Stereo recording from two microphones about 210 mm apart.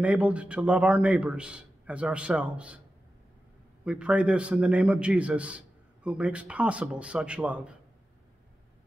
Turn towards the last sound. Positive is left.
turn(degrees=-5)  # may be behind; listen again after turning